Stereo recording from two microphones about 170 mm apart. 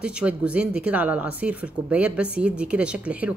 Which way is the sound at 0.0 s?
5° right (ahead or behind).